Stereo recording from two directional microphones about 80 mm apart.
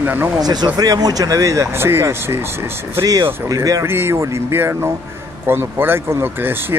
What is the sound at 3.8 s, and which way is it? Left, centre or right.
Speech, right.